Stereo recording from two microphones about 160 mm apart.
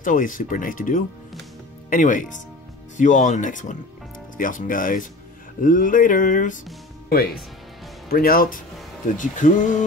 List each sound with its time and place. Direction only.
0.0 s speech: 55° left (ahead or behind)
8.1 s speech: 65° left (ahead or behind)